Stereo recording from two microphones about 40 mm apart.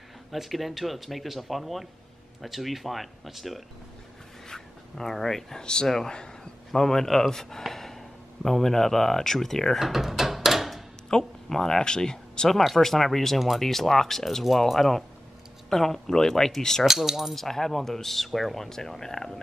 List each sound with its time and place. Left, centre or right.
0.3 s speech: centre
4.5 s a man's voice: centre
9.8 s a sound: centre
11.1 s speech: centre
12.4 s speech: centre
16.8 s coin: centre
17.4 s speech: centre